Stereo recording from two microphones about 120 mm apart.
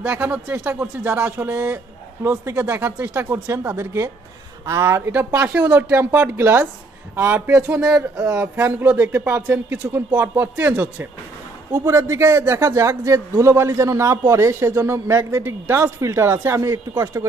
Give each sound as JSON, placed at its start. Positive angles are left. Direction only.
{"t": 0.0, "sound": "a man's voice", "side_deg": -10}
{"t": 8.2, "sound": "speech", "side_deg": -15}
{"t": 11.7, "sound": "a man's voice", "side_deg": -25}